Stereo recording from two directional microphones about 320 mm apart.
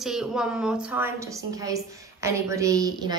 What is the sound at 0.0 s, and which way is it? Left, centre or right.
A woman's voice, centre.